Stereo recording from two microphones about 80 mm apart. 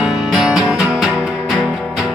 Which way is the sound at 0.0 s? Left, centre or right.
Centre.